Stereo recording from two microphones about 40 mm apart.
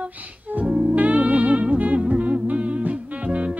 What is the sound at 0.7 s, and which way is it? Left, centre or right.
Music, right.